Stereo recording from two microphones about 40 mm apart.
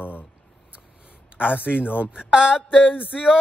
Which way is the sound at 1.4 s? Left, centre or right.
Right.